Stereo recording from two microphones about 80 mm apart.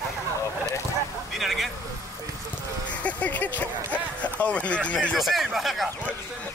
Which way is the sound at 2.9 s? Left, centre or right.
Centre.